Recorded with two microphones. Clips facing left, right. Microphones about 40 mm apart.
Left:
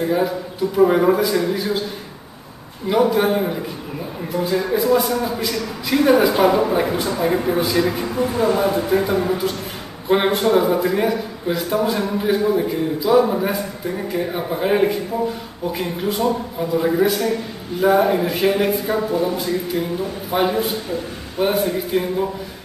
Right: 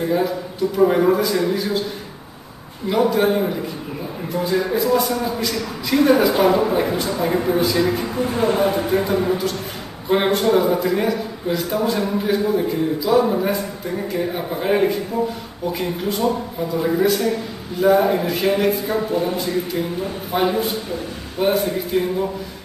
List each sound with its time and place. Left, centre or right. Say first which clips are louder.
0.0 s speech: left 1 dB; centre
2.9 s a man's voice: left 1 dB; centre
8.3 s speech: right 1 dB; right
8.8 s a man's voice: left 1 dB; centre